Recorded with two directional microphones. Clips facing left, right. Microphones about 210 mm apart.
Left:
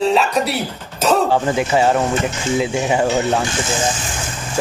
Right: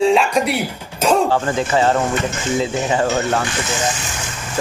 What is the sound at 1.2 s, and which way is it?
Speech, 15° left (ahead or behind).